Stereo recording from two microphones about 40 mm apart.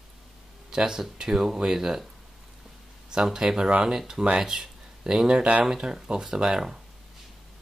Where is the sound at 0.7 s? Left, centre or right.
Centre.